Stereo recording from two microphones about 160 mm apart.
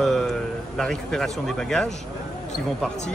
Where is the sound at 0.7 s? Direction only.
5° left (ahead or behind).